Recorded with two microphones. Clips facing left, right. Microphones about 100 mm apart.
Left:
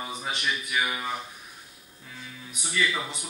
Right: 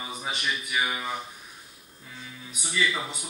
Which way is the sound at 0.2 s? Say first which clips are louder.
Right 1 dB; 10° right (ahead or behind).